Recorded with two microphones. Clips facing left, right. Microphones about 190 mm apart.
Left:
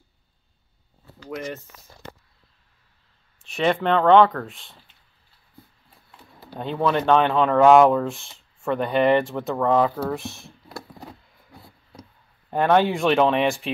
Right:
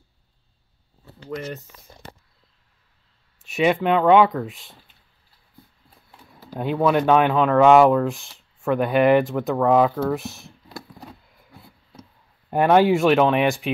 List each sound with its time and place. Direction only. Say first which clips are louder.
1.9 s a sound: right 4 dB; 20° right (ahead or behind)
3.4 s speech: right 2 dB; 5° right (ahead or behind)
6.4 s speech: right 3 dB; 10° right (ahead or behind)
11.9 s speech: left 1 dB; 5° right (ahead or behind)